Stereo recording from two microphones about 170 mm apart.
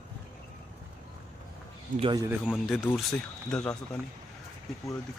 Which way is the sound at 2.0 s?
25° right (ahead or behind).